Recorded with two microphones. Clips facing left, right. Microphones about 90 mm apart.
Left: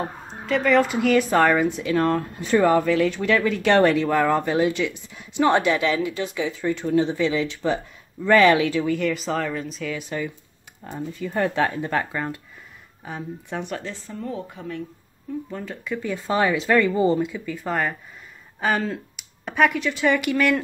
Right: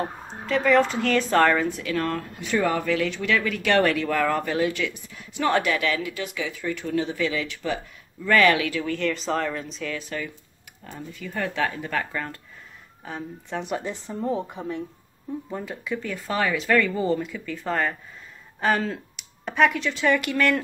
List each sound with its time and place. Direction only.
0.0 s speech: centre (ahead or behind); by 8.8 s 25° left (ahead or behind)
8.8 s speech: 10° left (ahead or behind)
9.9 s speech: 20° left (ahead or behind)
10.8 s speech: 30° left (ahead or behind)
13.0 s speech: 5° left (ahead or behind)
13.7 s speech: 15° right (ahead or behind)
14.2 s speech: 25° right (ahead or behind)
15.5 s speech: 5° right (ahead or behind)
16.0 s speech: 15° left (ahead or behind)